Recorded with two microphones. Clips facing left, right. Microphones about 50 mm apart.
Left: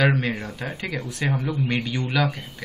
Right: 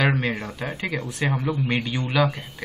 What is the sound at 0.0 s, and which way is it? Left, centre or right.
A woman's voice, centre.